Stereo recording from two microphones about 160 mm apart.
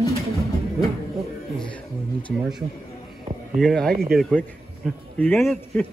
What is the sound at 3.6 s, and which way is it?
A man's voice, 5° left (ahead or behind).